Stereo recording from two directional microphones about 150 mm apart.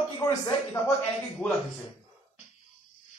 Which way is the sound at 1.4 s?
5° left (ahead or behind).